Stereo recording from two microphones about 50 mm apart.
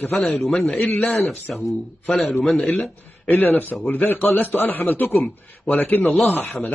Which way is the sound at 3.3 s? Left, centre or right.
Left.